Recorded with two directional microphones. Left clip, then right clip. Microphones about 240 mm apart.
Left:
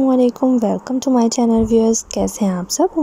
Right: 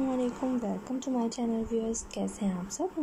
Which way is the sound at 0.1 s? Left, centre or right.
Left.